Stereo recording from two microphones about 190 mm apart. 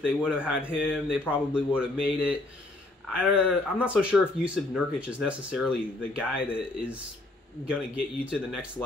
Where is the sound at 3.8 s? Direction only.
5° right (ahead or behind).